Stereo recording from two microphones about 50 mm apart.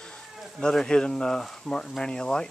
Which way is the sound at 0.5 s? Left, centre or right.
Centre.